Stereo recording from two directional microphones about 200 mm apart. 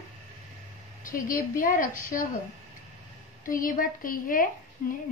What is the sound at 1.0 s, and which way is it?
A woman's voice, 45° left (ahead or behind).